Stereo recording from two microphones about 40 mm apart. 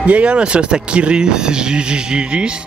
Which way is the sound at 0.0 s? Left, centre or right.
Right.